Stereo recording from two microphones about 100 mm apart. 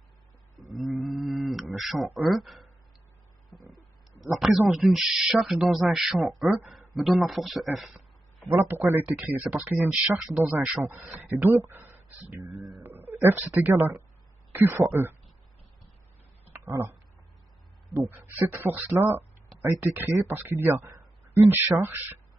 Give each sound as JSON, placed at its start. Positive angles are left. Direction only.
{"t": 0.8, "sound": "a sound", "side_deg": 0}
{"t": 2.0, "sound": "speech", "side_deg": 0}
{"t": 4.2, "sound": "speech", "side_deg": 0}
{"t": 8.5, "sound": "speech", "side_deg": -20}
{"t": 16.5, "sound": "a sound", "side_deg": -20}
{"t": 18.1, "sound": "speech", "side_deg": -20}